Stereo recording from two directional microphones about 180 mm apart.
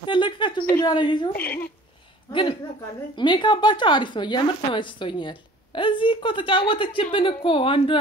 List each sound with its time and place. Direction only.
0.0 s a sound: 25° left (ahead or behind)
0.8 s speech: 25° left (ahead or behind)
1.4 s speech: 55° left (ahead or behind)
3.2 s speech: 25° left (ahead or behind)